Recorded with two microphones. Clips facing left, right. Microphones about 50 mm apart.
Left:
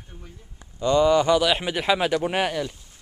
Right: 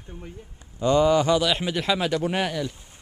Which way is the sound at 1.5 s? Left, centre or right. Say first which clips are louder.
Left 2 dB; centre.